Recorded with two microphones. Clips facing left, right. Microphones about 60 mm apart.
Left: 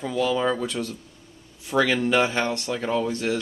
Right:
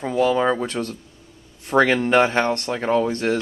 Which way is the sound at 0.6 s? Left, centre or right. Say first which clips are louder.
Right 3 dB; right.